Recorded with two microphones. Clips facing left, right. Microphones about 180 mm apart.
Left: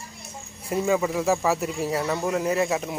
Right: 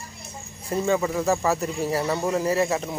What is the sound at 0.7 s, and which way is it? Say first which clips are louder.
Speech: even; 5° left (ahead or behind).